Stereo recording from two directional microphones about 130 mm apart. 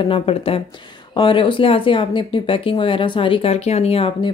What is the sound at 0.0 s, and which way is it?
Speech, 45° left (ahead or behind).